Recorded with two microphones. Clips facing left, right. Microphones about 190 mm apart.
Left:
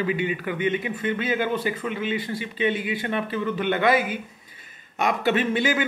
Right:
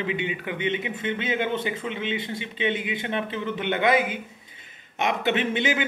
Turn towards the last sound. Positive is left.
turn(degrees=-20)  # may be behind; listen again after turning